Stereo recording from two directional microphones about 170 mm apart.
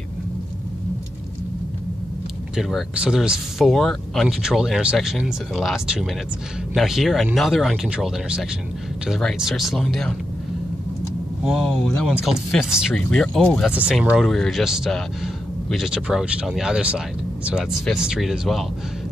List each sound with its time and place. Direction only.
2.5 s speech: 5° right (ahead or behind)
11.4 s speech: centre (ahead or behind)